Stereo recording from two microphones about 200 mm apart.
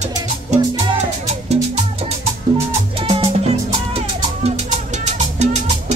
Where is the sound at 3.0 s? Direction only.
30° right (ahead or behind).